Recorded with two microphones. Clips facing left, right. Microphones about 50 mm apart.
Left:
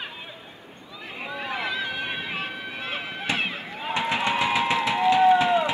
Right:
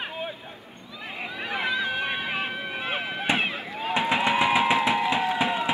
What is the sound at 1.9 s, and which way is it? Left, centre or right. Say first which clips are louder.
Vehicle: right 2 dB; centre.